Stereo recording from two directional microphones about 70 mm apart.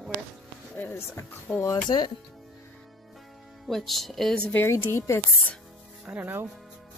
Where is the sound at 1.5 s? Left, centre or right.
Centre.